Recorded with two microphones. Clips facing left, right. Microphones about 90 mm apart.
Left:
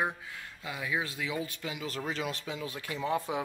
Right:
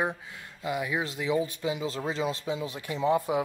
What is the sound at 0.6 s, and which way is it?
Speech, 15° right (ahead or behind).